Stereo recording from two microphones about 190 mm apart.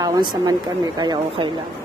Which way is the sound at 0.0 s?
20° right (ahead or behind).